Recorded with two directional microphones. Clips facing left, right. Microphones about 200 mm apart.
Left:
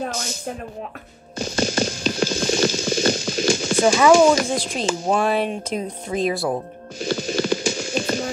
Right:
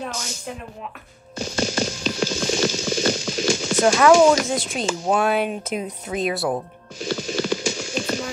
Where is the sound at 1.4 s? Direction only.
55° left (ahead or behind).